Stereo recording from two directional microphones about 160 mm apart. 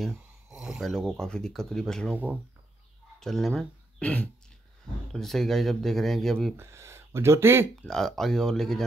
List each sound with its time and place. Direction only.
0.0 s speech: 5° right (ahead or behind)
3.2 s speech: 5° left (ahead or behind)
6.5 s speech: 15° right (ahead or behind)
7.8 s speech: 5° left (ahead or behind)